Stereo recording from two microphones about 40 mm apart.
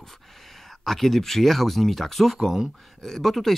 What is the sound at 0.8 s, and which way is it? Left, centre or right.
Speech, centre.